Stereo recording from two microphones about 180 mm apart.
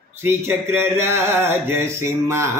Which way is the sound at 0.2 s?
10° right (ahead or behind).